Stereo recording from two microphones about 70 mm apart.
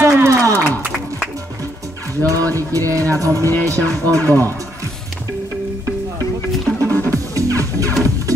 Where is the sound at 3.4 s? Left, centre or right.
Left.